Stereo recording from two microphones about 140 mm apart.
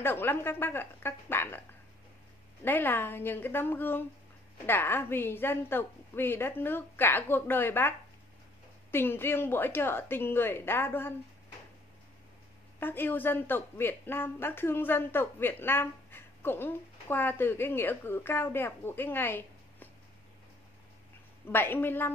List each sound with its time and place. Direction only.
0.0 s a woman's voice: 15° left (ahead or behind)
2.6 s a woman's voice: 15° left (ahead or behind)
8.9 s a woman's voice: 15° left (ahead or behind)
12.8 s a woman's voice: 15° left (ahead or behind)
21.5 s a woman's voice: 15° left (ahead or behind)